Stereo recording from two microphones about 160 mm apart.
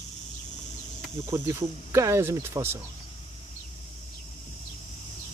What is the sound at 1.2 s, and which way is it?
Speech, 15° right (ahead or behind).